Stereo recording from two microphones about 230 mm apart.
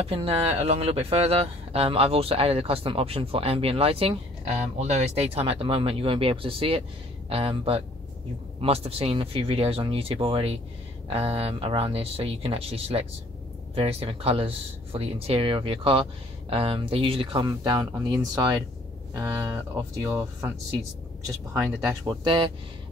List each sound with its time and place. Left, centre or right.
0.0 s speech: right
21.5 s speech: centre